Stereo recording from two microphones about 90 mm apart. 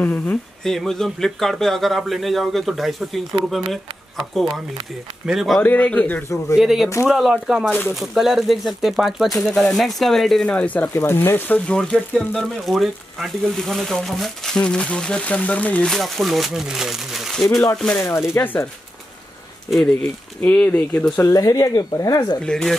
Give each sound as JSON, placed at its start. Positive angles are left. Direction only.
{"t": 0.0, "sound": "speech", "side_deg": 20}
{"t": 0.7, "sound": "speech", "side_deg": 5}
{"t": 5.2, "sound": "speech", "side_deg": -5}
{"t": 5.6, "sound": "speech", "side_deg": 15}
{"t": 6.2, "sound": "speech", "side_deg": 35}
{"t": 6.6, "sound": "speech", "side_deg": -5}
{"t": 10.4, "sound": "speech", "side_deg": 15}
{"t": 12.4, "sound": "speech", "side_deg": 0}
{"t": 15.9, "sound": "speech", "side_deg": 0}
{"t": 17.9, "sound": "speech", "side_deg": 30}
{"t": 20.5, "sound": "speech", "side_deg": 15}
{"t": 21.3, "sound": "speech", "side_deg": 40}
{"t": 22.4, "sound": "speech", "side_deg": 5}